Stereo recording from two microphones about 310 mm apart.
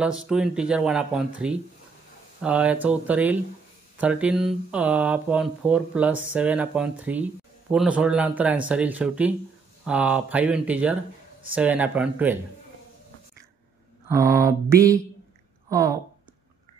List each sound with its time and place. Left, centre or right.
0.0 s speech: centre
14.0 s mantra: centre